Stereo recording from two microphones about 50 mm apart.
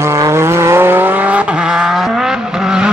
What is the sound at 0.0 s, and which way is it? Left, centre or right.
Vehicle, right.